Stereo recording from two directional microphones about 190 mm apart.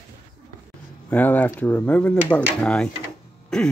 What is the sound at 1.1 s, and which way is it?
Speech, 10° left (ahead or behind).